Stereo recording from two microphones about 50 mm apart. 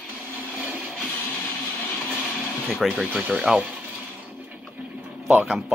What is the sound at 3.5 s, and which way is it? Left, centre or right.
Speech, centre.